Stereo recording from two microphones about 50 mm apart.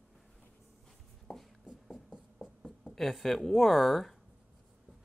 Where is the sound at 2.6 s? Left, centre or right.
Centre.